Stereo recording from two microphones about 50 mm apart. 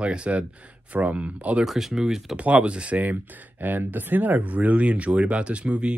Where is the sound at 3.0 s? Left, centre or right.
Right.